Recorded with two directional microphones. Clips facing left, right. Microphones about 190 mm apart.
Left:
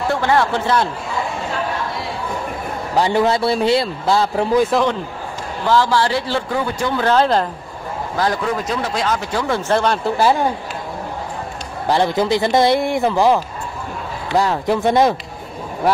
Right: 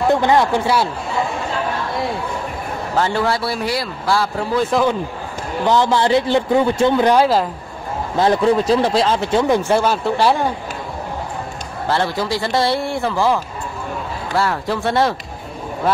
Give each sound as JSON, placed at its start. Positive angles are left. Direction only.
{"t": 0.1, "sound": "a man's voice", "side_deg": -20}
{"t": 3.0, "sound": "speech", "side_deg": 20}
{"t": 5.7, "sound": "speech", "side_deg": -20}
{"t": 8.2, "sound": "speech", "side_deg": -25}
{"t": 9.6, "sound": "speech", "side_deg": -10}
{"t": 11.9, "sound": "speech", "side_deg": 20}